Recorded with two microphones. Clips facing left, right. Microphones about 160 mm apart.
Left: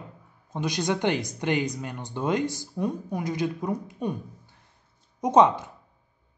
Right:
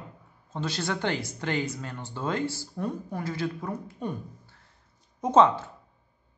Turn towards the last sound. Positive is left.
turn(degrees=15)  # may be behind; listen again after turning